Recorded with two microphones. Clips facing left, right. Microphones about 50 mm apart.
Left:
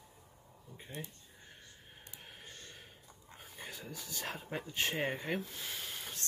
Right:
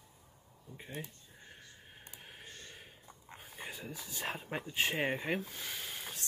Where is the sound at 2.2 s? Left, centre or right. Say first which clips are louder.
Right 1 dB; centre.